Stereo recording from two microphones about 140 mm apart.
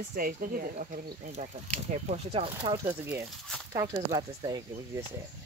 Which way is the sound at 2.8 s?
20° right (ahead or behind).